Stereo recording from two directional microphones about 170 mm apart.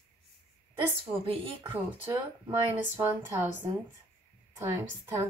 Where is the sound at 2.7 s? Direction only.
15° right (ahead or behind).